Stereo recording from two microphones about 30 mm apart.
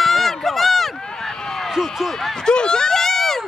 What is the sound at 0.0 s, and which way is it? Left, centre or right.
Run, centre.